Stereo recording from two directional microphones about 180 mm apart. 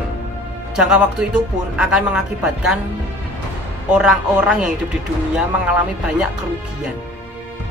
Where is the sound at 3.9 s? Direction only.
5° right (ahead or behind).